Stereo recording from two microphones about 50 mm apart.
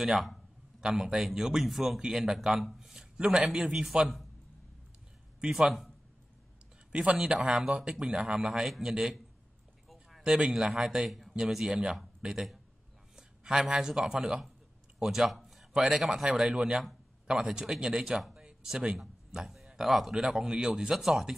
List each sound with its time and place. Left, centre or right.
0.0 s a man's voice: centre
3.2 s speech: centre
3.6 s a man's voice: centre
5.5 s a man's voice: centre
6.9 s a man's voice: centre
10.2 s a man's voice: centre
18.3 s a sound: centre
19.3 s a man's voice: centre